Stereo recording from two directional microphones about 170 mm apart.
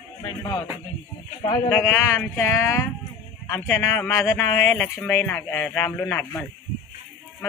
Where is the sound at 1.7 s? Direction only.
15° left (ahead or behind).